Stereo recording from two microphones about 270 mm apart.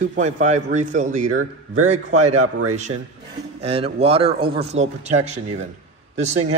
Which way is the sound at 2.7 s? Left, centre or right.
Right.